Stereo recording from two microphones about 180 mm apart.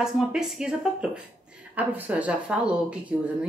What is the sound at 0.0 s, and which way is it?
Speech, 5° right (ahead or behind).